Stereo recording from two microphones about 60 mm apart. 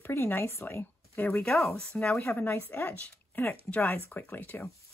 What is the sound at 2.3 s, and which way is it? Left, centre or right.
A woman's voice, left.